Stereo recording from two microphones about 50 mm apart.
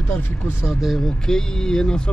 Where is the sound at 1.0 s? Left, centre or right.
Centre.